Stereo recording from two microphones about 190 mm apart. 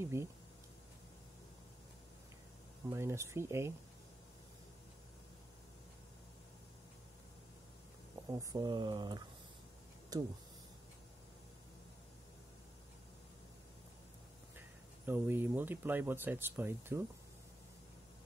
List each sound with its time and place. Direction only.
0.0 s speech: 15° right (ahead or behind)
2.9 s speech: 15° right (ahead or behind)
8.3 s speech: 15° right (ahead or behind)
15.0 s speech: 10° right (ahead or behind)